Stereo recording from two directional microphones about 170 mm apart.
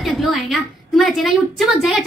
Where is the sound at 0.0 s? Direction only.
Centre (ahead or behind).